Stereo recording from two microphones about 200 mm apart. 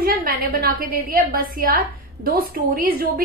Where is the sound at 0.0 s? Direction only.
45° right (ahead or behind).